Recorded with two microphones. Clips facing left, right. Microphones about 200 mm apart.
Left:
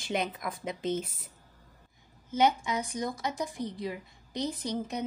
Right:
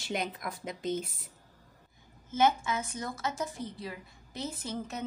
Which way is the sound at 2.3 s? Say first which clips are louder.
Left 1 dB; 15° left (ahead or behind).